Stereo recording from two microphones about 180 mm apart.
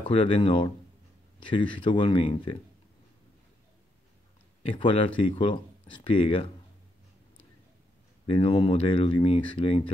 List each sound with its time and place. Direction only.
0.1 s speech: 30° left (ahead or behind)
4.6 s speech: 30° left (ahead or behind)
8.3 s speech: 30° left (ahead or behind)